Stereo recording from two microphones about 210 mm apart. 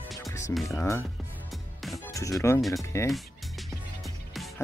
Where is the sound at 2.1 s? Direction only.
15° left (ahead or behind).